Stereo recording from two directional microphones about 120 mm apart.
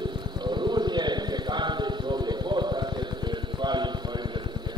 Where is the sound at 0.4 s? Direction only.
40° right (ahead or behind).